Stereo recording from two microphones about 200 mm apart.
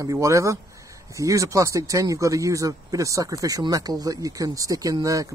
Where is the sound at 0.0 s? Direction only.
15° right (ahead or behind).